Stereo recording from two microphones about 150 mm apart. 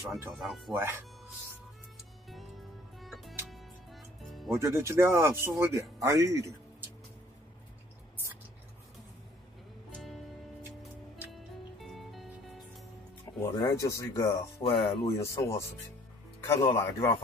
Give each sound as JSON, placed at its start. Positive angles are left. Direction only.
{"t": 0.2, "sound": "speech", "side_deg": -5}
{"t": 3.0, "sound": "music", "side_deg": 0}
{"t": 4.6, "sound": "speech", "side_deg": -20}
{"t": 11.8, "sound": "music", "side_deg": 0}
{"t": 13.2, "sound": "music", "side_deg": 20}
{"t": 13.7, "sound": "speech", "side_deg": 20}
{"t": 14.6, "sound": "speech", "side_deg": 40}
{"t": 15.0, "sound": "speech", "side_deg": 20}